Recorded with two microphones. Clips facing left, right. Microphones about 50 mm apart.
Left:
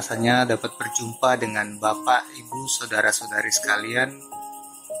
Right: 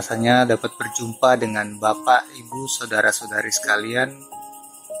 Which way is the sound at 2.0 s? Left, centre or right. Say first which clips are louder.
Right 5 dB; left.